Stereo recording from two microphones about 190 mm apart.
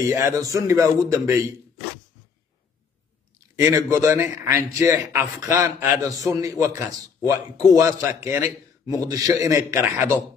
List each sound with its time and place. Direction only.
0.1 s a man's voice: 15° right (ahead or behind)
3.6 s a man's voice: 10° right (ahead or behind)